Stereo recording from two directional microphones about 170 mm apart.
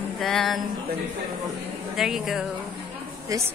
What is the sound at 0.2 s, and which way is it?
Speech, centre (ahead or behind).